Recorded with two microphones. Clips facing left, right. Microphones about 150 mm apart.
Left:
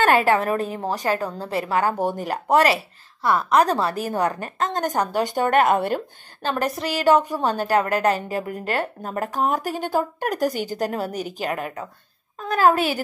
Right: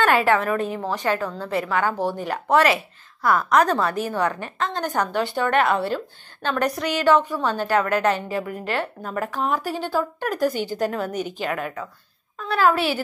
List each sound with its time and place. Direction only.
0.0 s a woman's voice: 35° left (ahead or behind); by 6.0 s 50° left (ahead or behind)
6.8 s a woman's voice: 35° left (ahead or behind)